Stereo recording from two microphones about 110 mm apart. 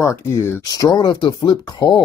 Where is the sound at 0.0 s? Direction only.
25° left (ahead or behind).